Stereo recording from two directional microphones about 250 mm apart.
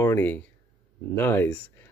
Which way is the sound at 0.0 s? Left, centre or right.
Centre.